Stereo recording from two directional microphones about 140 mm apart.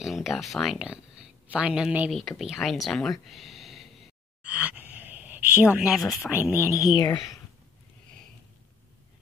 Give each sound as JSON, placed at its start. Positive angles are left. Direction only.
{"t": 0.0, "sound": "speech", "side_deg": 0}
{"t": 4.4, "sound": "a sound", "side_deg": -10}
{"t": 6.3, "sound": "speech", "side_deg": -10}
{"t": 6.8, "sound": "speech", "side_deg": 30}